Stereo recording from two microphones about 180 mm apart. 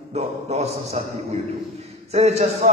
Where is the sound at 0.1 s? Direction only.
35° right (ahead or behind).